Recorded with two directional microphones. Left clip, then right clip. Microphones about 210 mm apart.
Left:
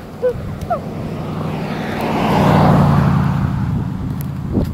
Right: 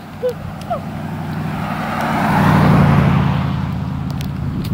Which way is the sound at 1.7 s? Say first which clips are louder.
Right 2 dB; 60° right (ahead or behind).